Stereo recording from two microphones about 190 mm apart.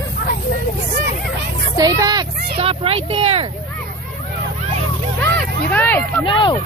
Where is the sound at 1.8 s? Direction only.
20° right (ahead or behind).